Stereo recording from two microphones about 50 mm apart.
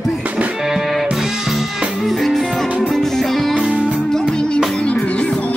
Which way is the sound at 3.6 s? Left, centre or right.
Right.